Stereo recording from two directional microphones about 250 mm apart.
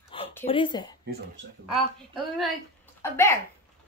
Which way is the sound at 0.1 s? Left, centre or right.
Left.